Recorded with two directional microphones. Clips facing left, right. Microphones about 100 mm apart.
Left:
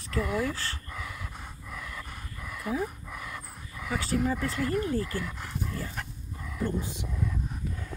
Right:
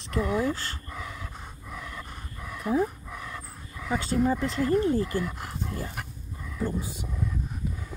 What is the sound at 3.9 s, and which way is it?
Speech, 25° right (ahead or behind).